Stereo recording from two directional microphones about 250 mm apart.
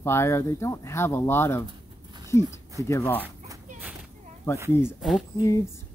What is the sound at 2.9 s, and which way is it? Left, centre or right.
Speech, centre.